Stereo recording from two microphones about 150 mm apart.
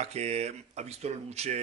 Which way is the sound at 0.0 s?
45° right (ahead or behind).